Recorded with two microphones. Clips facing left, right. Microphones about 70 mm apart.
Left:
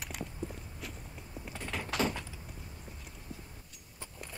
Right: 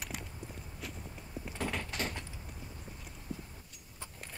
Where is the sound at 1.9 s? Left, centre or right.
Left.